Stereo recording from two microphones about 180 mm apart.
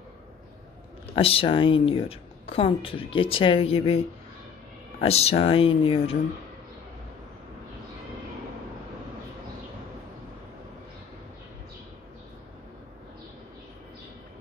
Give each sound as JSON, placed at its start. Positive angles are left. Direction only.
{"t": 1.1, "sound": "a woman's voice", "side_deg": 30}
{"t": 5.0, "sound": "a woman's voice", "side_deg": 35}